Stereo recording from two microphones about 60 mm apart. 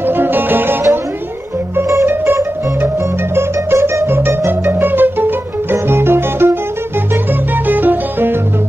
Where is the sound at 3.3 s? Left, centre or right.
Right.